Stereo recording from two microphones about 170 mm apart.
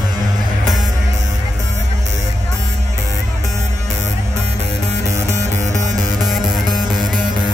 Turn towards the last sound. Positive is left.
turn(degrees=0)  # may be behind; listen again after turning